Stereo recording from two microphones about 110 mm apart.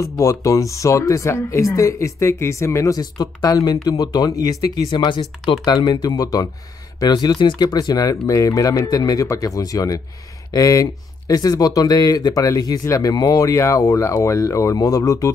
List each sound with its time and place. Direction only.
0.0 s speech: 30° left (ahead or behind)